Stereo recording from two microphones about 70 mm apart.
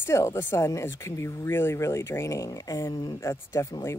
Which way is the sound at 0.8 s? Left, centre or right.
Left.